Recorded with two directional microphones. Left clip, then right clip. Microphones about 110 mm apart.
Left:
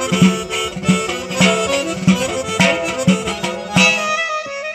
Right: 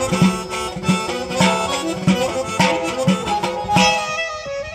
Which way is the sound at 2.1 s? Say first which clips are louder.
Right 1 dB; 30° right (ahead or behind).